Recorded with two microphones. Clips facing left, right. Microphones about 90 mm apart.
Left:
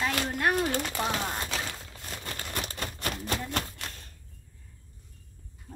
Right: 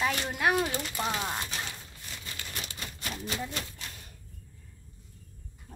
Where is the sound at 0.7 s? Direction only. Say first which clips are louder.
Left 4 dB; 50° left (ahead or behind).